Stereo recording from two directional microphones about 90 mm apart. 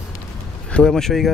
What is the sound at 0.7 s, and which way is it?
Speech, 5° left (ahead or behind).